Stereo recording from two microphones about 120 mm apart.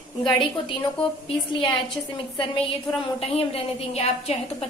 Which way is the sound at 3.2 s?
55° left (ahead or behind).